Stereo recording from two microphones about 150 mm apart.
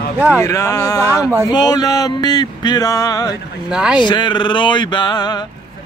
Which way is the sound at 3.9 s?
30° left (ahead or behind).